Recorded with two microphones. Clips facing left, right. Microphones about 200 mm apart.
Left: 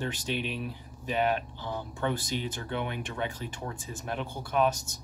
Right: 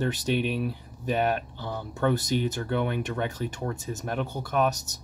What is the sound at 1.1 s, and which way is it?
Speech, 45° right (ahead or behind).